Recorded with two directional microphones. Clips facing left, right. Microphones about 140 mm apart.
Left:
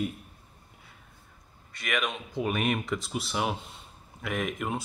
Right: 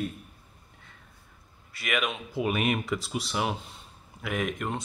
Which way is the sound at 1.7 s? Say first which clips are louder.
Right 1 dB; 5° right (ahead or behind).